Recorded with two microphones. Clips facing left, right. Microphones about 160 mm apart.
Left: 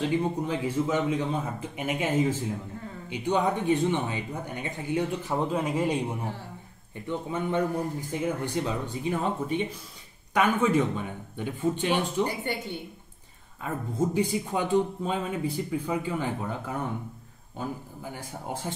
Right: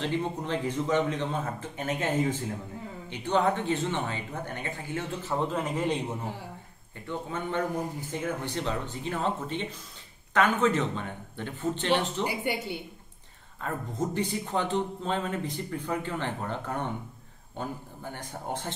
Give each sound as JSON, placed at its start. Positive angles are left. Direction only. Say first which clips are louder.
{"t": 0.0, "sound": "a man's voice", "louder": "left 4 dB", "side_deg": 10}
{"t": 12.3, "sound": "a woman's voice", "louder": "right 1 dB", "side_deg": -10}
{"t": 13.6, "sound": "a man's voice", "louder": "left 3 dB", "side_deg": 10}